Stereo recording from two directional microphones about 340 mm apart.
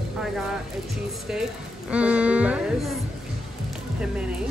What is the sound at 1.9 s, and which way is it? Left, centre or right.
A woman's voice, centre.